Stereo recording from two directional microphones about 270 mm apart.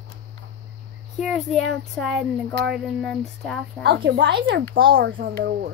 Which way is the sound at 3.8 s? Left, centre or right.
Right.